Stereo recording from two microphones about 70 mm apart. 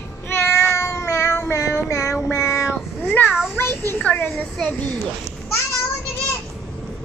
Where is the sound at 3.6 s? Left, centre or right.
Left.